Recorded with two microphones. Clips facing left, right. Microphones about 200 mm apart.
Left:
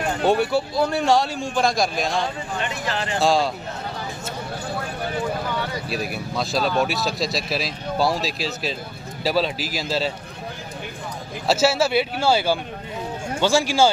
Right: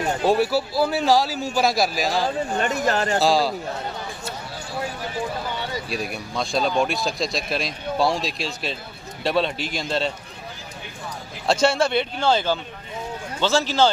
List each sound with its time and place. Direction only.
0.2 s a man's voice: centre (ahead or behind)
2.6 s speech: 45° right (ahead or behind)
3.2 s a man's voice: centre (ahead or behind)
5.9 s a man's voice: centre (ahead or behind)
11.4 s a man's voice: 5° left (ahead or behind)